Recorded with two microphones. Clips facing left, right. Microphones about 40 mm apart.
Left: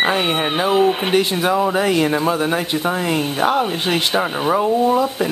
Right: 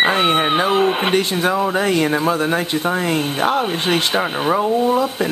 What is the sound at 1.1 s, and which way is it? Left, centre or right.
Speech, centre.